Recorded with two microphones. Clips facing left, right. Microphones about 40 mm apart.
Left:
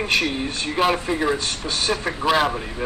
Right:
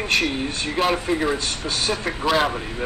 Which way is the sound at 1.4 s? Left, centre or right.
Centre.